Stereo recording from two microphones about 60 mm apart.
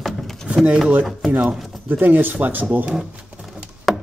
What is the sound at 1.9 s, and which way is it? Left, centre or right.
Speech, right.